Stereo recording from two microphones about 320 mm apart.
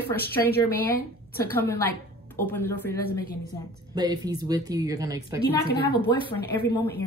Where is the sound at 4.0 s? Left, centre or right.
Centre.